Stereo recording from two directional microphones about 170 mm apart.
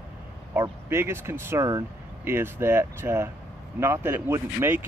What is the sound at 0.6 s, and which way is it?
Speech, 15° right (ahead or behind).